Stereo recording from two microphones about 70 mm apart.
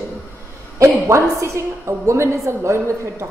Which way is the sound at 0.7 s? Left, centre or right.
Right.